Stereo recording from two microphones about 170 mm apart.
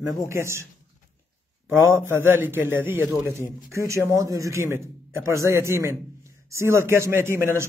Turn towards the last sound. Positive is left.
turn(degrees=-15)  # may be behind; listen again after turning